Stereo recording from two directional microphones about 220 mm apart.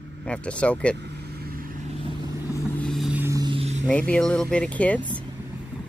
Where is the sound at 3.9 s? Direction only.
5° left (ahead or behind).